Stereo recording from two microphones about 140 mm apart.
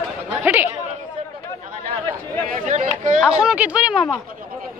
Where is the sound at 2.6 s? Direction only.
60° right (ahead or behind).